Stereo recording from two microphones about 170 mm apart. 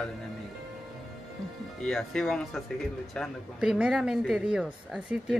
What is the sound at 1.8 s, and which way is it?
Speech, centre (ahead or behind).